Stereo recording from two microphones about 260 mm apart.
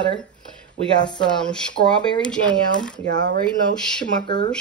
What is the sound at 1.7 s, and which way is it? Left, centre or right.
Speech, centre.